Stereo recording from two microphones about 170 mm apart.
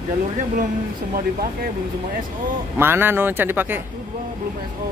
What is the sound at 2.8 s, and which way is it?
Speech, 10° right (ahead or behind).